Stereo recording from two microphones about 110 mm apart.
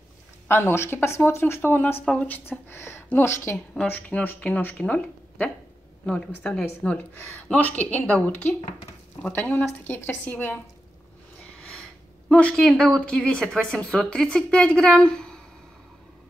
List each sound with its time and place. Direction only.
0.5 s speech: 20° left (ahead or behind)
12.3 s speech: 10° left (ahead or behind)